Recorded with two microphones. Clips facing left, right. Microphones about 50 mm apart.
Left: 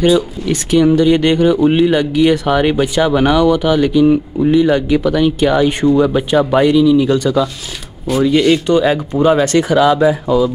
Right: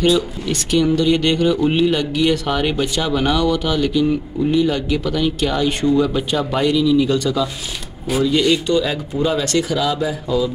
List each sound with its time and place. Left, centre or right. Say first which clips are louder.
0.0 s speech: left 4 dB; centre; by 10.3 s left